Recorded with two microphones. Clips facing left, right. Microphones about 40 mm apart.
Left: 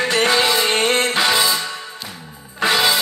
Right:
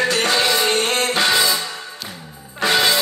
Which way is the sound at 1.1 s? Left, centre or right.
Centre.